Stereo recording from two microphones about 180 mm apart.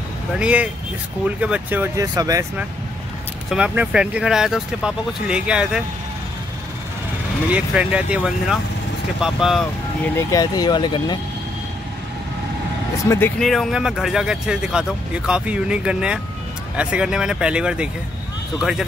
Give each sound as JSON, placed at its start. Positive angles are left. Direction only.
{"t": 0.4, "sound": "speech", "side_deg": -5}
{"t": 3.4, "sound": "speech", "side_deg": -5}
{"t": 7.5, "sound": "speech", "side_deg": -5}
{"t": 10.1, "sound": "speech", "side_deg": 20}
{"t": 13.4, "sound": "speech", "side_deg": 0}